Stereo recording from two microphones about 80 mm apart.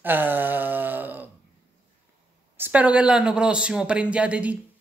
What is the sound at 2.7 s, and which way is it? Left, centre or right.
A man's voice, centre.